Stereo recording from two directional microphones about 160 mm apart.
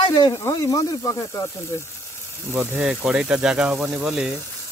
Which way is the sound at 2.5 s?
5° right (ahead or behind).